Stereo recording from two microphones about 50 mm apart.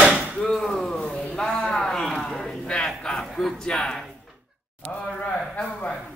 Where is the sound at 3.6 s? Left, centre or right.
Centre.